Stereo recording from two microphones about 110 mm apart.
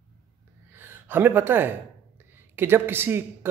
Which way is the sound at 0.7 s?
20° right (ahead or behind).